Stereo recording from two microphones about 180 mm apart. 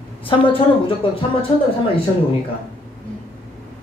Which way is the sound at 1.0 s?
30° left (ahead or behind).